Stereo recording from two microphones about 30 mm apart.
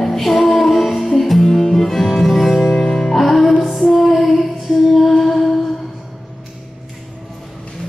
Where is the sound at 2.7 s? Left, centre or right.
Centre.